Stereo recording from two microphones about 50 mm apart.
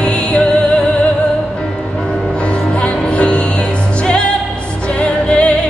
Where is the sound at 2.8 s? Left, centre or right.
Left.